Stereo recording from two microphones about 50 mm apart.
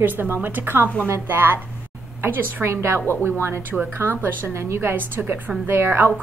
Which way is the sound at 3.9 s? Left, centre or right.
Right.